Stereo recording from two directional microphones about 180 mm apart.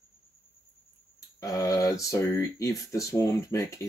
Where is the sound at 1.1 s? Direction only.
20° left (ahead or behind).